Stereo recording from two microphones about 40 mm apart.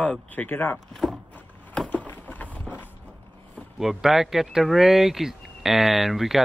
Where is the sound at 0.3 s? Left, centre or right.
Left.